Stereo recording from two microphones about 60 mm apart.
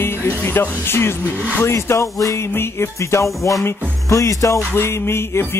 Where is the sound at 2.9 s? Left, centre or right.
Left.